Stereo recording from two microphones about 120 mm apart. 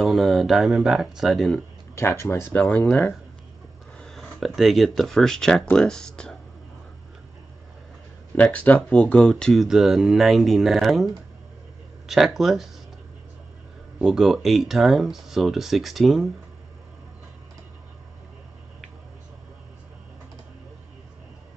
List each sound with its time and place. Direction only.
0.0 s speech: centre (ahead or behind)
2.0 s speech: 25° left (ahead or behind)
4.0 s speech: centre (ahead or behind)
8.4 s speech: 10° left (ahead or behind)
12.1 s speech: centre (ahead or behind)
14.0 s speech: centre (ahead or behind)